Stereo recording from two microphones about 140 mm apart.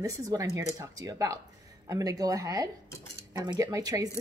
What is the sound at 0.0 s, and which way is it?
A woman's voice, 25° right (ahead or behind).